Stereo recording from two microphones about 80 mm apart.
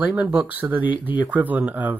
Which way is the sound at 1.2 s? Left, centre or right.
Centre.